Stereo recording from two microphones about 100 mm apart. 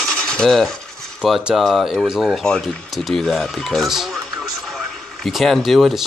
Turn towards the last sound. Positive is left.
turn(degrees=0)  # may be behind; listen again after turning